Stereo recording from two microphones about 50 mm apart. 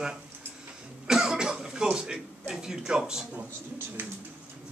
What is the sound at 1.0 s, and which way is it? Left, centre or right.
Cough, centre.